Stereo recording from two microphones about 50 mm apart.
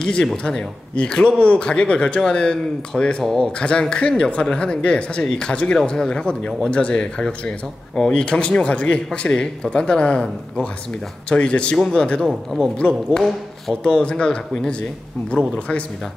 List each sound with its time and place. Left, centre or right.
0.0 s a man's voice: centre
13.8 s speech: centre